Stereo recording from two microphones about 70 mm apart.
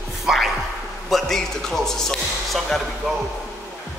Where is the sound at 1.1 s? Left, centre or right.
Centre.